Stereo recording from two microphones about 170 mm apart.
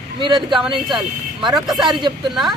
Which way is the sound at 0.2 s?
30° right (ahead or behind).